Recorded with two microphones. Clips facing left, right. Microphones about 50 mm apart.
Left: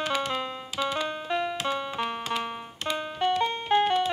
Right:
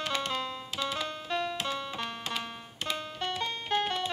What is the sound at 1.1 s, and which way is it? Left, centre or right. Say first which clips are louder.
Music: left 4 dB; centre.